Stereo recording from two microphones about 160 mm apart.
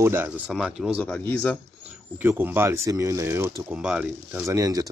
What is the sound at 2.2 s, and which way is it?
Speech, 15° right (ahead or behind).